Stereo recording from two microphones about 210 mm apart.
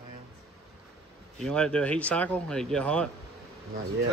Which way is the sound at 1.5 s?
5° left (ahead or behind).